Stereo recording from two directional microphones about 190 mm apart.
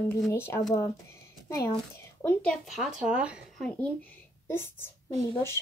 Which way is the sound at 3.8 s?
10° left (ahead or behind).